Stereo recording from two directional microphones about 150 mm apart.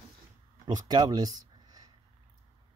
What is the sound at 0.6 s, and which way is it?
Speech, 30° right (ahead or behind).